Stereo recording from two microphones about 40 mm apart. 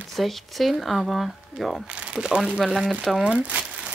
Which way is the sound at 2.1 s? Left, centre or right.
Right.